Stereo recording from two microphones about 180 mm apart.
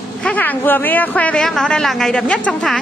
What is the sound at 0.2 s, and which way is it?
A woman's voice, 10° left (ahead or behind).